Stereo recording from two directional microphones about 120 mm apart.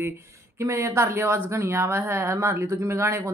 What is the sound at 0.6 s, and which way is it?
A woman's voice, 25° right (ahead or behind).